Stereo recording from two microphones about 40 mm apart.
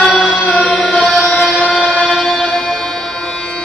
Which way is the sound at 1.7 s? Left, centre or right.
Centre.